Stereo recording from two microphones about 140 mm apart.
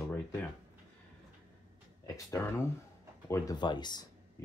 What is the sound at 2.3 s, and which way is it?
Speech, 20° left (ahead or behind).